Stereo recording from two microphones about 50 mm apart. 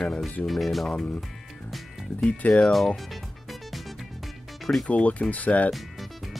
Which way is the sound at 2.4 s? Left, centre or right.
Left.